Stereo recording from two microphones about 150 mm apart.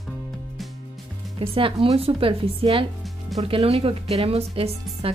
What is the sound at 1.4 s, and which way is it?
Speech, 35° right (ahead or behind).